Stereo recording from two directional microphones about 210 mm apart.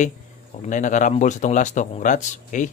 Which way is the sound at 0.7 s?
35° left (ahead or behind).